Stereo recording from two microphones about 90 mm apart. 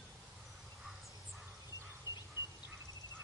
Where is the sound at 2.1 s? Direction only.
35° right (ahead or behind).